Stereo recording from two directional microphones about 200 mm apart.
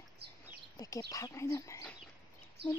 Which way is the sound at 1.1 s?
15° left (ahead or behind).